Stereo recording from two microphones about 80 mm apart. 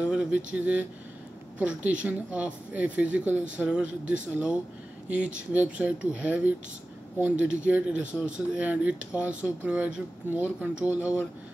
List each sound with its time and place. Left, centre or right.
0.0 s speech: centre